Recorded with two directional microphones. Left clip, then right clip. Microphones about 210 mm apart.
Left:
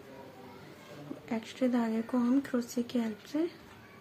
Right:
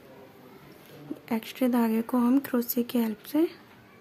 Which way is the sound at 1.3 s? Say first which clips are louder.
Right 4 dB; 50° right (ahead or behind).